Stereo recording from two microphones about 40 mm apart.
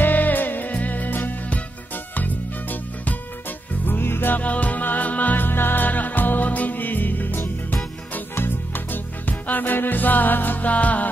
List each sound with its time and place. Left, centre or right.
0.0 s music: left
3.8 s music: left
4.4 s music: left
8.4 s music: left